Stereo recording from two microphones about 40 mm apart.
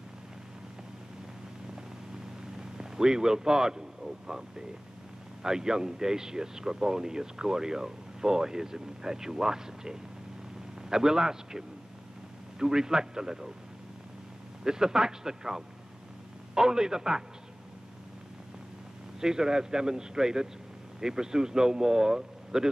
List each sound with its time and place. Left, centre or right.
2.5 s a sound: centre
5.4 s speech: centre
14.6 s speech: centre
19.1 s speech: centre